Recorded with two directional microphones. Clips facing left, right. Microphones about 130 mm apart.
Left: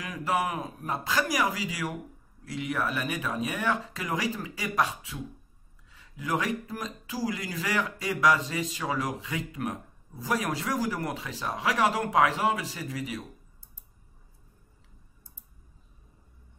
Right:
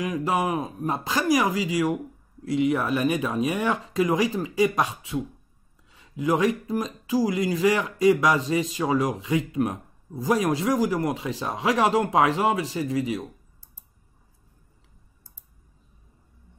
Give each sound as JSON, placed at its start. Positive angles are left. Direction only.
{"t": 0.0, "sound": "speech", "side_deg": -20}